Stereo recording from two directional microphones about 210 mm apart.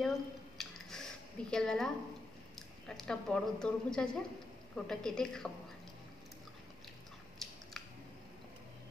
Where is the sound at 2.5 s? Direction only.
Centre (ahead or behind).